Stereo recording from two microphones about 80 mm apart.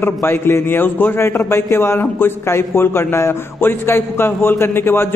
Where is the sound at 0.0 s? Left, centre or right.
Left.